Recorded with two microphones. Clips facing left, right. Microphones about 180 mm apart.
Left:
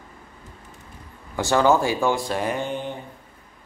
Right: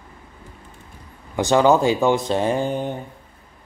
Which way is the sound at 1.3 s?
20° right (ahead or behind).